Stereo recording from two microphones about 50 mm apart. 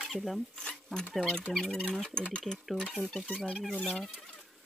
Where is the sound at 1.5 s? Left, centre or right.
Centre.